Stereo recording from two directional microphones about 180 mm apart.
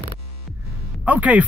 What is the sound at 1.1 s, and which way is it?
Speech, 10° right (ahead or behind).